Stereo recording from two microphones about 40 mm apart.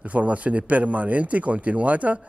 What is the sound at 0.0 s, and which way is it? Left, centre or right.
A man's voice, right.